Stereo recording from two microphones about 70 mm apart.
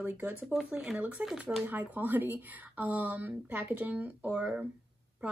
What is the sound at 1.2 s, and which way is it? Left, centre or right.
Speech, right.